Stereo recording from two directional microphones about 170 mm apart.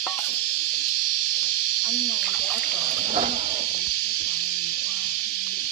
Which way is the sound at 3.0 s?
50° right (ahead or behind).